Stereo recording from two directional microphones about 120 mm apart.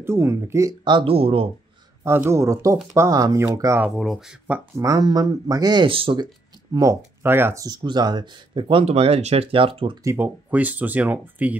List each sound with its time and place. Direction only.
0.0 s speech: 20° right (ahead or behind)
0.8 s speech: 45° right (ahead or behind)
2.0 s speech: 20° right (ahead or behind)
3.9 s speech: centre (ahead or behind)
4.7 s speech: 25° right (ahead or behind); by 6.2 s 45° right (ahead or behind)
6.7 s speech: 25° right (ahead or behind)
7.6 s speech: 35° right (ahead or behind)
10.0 s speech: 15° right (ahead or behind)